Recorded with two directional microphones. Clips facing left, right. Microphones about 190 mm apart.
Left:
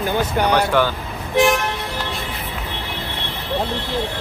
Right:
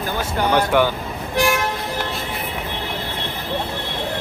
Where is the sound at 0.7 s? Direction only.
15° right (ahead or behind).